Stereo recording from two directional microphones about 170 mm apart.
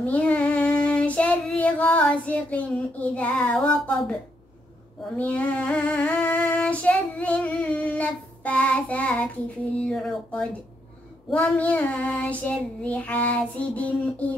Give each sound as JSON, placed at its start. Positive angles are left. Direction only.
{"t": 0.0, "sound": "child singing", "side_deg": 5}
{"t": 5.1, "sound": "female singing", "side_deg": 10}